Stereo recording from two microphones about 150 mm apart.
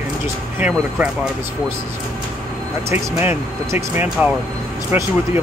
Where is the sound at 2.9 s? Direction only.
15° right (ahead or behind).